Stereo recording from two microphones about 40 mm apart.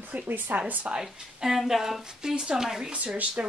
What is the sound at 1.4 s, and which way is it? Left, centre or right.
A woman's voice, centre.